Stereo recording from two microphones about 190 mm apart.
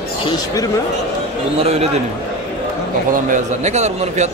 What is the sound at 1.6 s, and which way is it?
Speech, 35° right (ahead or behind).